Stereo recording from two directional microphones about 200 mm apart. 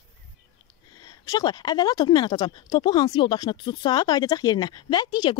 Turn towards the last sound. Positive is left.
turn(degrees=20)  # may be behind; listen again after turning